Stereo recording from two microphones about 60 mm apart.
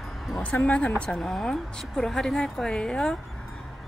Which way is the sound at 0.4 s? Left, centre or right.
Left.